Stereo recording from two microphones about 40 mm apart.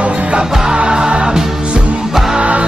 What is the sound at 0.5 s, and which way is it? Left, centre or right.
Music, right.